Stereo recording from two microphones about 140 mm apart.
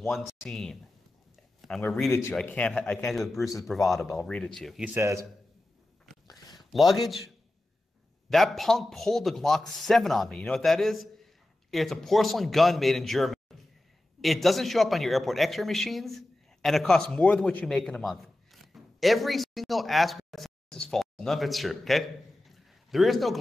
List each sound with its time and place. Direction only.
0.1 s a man's voice: centre (ahead or behind)
1.6 s a sound: centre (ahead or behind)
2.4 s a man's voice: 10° left (ahead or behind)
4.9 s a man's voice: 20° right (ahead or behind)
6.7 s a man's voice: centre (ahead or behind)